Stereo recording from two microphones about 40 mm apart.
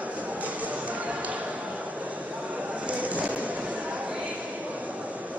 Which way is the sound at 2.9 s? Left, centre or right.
Right.